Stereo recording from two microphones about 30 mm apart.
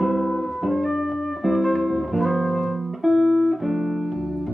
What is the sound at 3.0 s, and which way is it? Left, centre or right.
Music, centre.